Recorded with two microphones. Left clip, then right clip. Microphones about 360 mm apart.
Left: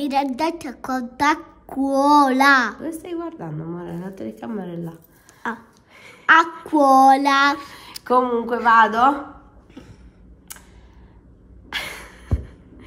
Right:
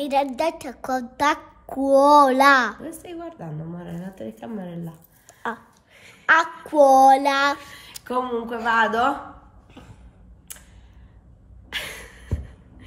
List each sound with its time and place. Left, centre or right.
0.0 s a woman's voice: centre
5.9 s a woman's voice: centre
10.5 s a sound: centre
11.7 s music: centre